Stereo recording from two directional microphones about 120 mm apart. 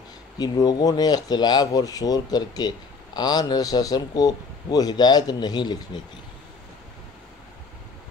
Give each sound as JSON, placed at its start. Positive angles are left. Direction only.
{"t": 0.4, "sound": "a man's voice", "side_deg": 35}